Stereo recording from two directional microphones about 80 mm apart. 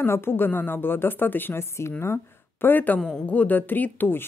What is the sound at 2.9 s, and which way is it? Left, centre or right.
Speech, centre.